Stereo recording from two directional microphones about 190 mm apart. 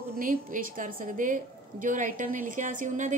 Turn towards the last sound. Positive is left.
turn(degrees=-40)  # may be behind; listen again after turning